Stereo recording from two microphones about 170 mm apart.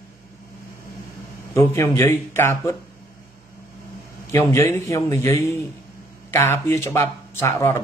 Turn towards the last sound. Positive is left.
turn(degrees=15)  # may be behind; listen again after turning